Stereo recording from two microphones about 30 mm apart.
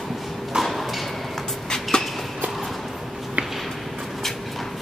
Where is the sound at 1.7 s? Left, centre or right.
Left.